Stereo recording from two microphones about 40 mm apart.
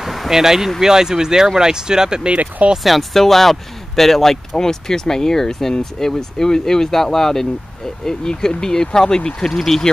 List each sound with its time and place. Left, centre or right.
0.0 s a sound: centre
0.7 s speech: centre
2.8 s speech: centre